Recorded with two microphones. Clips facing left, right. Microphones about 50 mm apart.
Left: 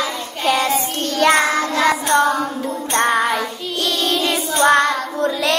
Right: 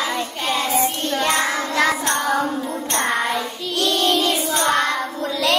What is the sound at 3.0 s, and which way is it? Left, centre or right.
Music, left.